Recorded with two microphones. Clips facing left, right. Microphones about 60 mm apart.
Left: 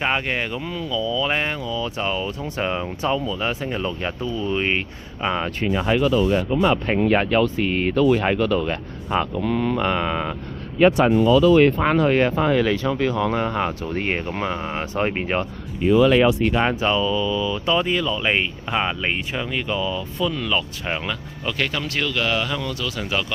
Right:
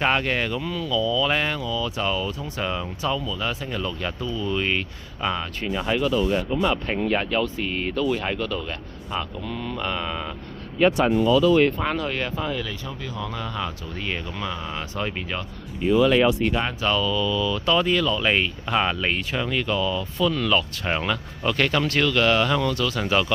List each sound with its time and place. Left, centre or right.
0.0 s speech: centre; by 7.0 s left
7.0 s speech: left
9.3 s speech: left
12.4 s speech: left; by 20.9 s centre
20.9 s speech: centre